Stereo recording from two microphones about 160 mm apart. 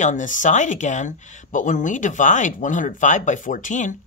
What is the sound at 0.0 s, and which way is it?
Speech, 50° left (ahead or behind).